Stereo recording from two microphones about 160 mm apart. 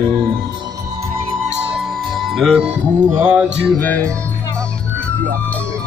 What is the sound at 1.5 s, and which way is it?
Music, 5° right (ahead or behind).